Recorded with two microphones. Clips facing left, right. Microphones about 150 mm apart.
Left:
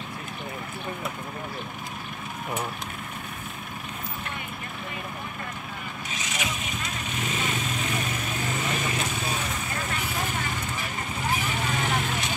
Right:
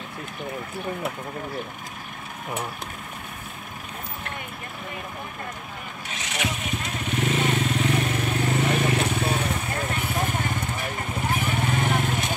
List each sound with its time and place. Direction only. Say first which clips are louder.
6.1 s vehicle: right 3 dB; 60° right (ahead or behind)